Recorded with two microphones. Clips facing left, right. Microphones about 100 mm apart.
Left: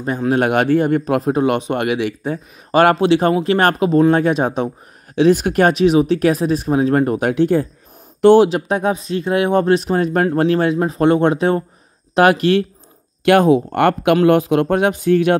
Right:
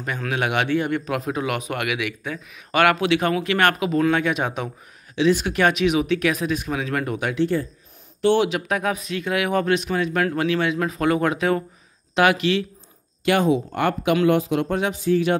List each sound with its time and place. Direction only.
0.0 s speech: 35° left (ahead or behind)
5.1 s speech: 50° left (ahead or behind)
8.5 s speech: 30° left (ahead or behind)
10.8 s speech: 30° left (ahead or behind)
12.2 s speech: 45° left (ahead or behind)
13.2 s speech: 60° left (ahead or behind)